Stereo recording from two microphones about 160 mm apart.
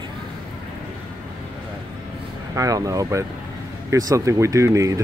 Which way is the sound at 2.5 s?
20° right (ahead or behind).